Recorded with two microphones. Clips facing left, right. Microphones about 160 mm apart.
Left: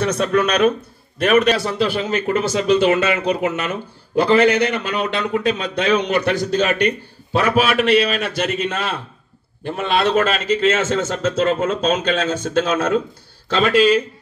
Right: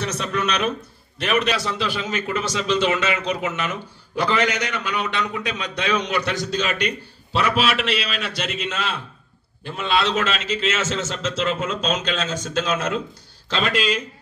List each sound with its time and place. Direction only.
0.0 s a man's voice: 55° left (ahead or behind)
4.6 s a man's voice: 55° left (ahead or behind)